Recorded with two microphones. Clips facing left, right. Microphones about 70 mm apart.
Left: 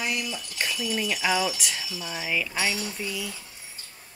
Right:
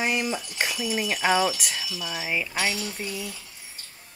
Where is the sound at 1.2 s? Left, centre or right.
Right.